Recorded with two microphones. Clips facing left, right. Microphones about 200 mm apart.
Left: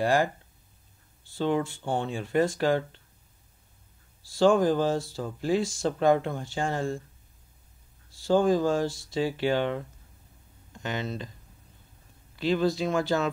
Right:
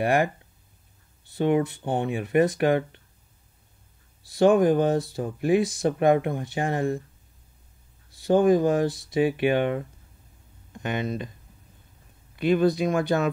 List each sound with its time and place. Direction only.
0.0 s speech: 20° right (ahead or behind)
1.3 s speech: 20° right (ahead or behind)
4.3 s speech: 20° right (ahead or behind)
8.1 s speech: 20° right (ahead or behind)
12.4 s speech: 20° right (ahead or behind)